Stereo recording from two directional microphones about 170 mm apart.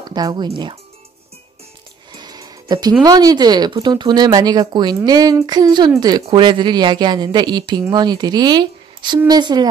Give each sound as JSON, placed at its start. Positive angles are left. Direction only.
{"t": 0.0, "sound": "speech", "side_deg": -25}
{"t": 2.1, "sound": "speech", "side_deg": -25}